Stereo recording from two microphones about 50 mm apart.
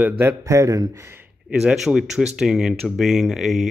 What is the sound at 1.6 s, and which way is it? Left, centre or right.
Speech, centre.